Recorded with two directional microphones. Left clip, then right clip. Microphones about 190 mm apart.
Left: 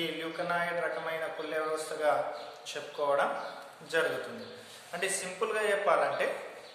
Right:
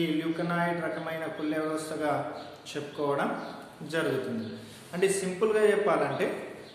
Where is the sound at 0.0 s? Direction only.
15° left (ahead or behind).